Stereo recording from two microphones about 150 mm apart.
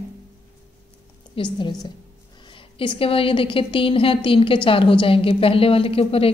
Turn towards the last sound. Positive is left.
turn(degrees=40)  # may be behind; listen again after turning